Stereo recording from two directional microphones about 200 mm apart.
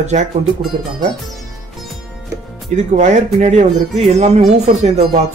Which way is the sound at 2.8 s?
35° right (ahead or behind).